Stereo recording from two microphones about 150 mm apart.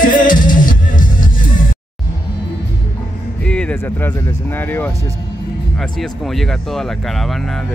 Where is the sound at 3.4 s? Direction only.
5° left (ahead or behind).